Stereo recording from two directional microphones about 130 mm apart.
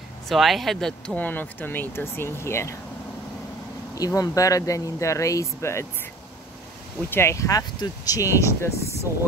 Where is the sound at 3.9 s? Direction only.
30° left (ahead or behind).